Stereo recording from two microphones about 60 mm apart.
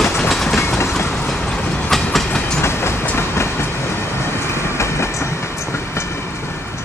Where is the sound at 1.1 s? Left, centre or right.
Centre.